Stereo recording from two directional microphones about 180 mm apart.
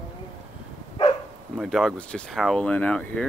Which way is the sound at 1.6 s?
Centre (ahead or behind).